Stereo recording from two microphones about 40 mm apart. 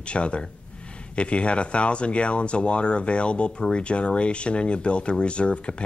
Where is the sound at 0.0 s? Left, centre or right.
Left.